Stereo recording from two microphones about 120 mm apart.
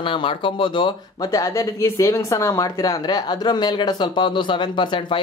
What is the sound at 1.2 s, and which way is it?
Speech, 25° left (ahead or behind).